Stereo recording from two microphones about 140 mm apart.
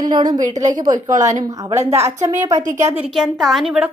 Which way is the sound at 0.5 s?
60° right (ahead or behind).